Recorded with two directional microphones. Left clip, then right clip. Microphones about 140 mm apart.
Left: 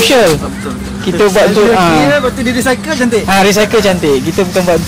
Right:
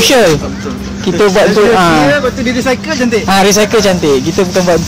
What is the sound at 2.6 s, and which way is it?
Speech, 25° left (ahead or behind).